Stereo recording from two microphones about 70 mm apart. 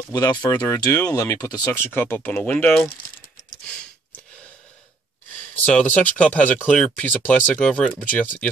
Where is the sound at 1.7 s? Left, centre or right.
Left.